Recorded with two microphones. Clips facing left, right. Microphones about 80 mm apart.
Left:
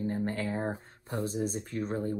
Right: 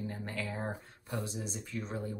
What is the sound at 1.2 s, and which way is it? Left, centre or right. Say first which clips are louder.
Speech: left 8 dB; left.